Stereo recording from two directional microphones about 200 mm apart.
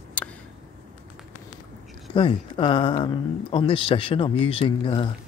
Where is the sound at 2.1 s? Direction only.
25° left (ahead or behind).